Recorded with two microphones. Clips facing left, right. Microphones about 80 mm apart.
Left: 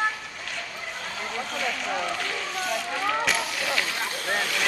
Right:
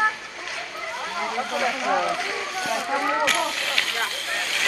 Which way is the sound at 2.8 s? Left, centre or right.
Right.